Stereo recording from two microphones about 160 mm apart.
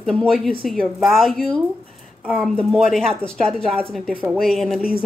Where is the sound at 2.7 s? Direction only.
Centre (ahead or behind).